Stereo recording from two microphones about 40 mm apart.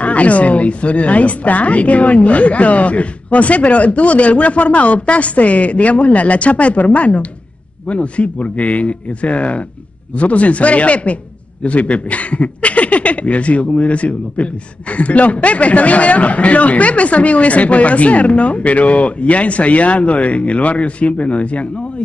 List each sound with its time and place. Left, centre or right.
0.0 s speech: left